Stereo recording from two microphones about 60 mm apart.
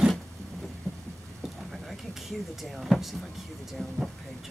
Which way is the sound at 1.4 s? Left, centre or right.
Centre.